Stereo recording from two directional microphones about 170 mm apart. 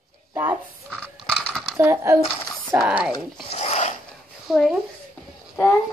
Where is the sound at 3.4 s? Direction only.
40° left (ahead or behind).